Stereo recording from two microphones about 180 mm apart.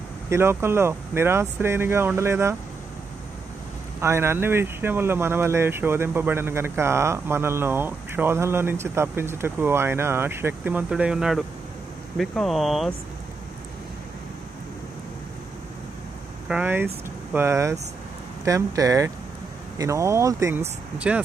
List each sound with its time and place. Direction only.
0.3 s speech: 15° right (ahead or behind)
4.0 s speech: 15° right (ahead or behind)
16.4 s speech: 10° right (ahead or behind)